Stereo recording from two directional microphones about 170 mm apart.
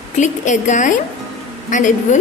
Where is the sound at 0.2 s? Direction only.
45° left (ahead or behind).